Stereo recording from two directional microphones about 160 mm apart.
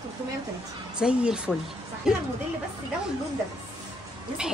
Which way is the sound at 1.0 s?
5° right (ahead or behind).